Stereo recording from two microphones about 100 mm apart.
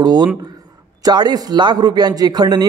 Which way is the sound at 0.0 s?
45° right (ahead or behind).